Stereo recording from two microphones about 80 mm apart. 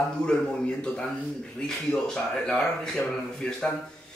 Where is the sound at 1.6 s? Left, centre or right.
Centre.